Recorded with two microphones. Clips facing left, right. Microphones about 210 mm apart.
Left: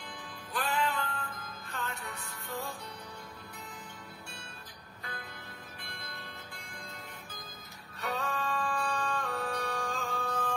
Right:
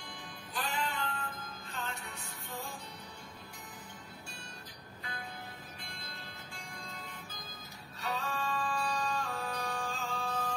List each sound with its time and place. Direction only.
0.5 s music: 60° left (ahead or behind)
5.9 s music: 60° left (ahead or behind)
8.0 s music: 55° left (ahead or behind)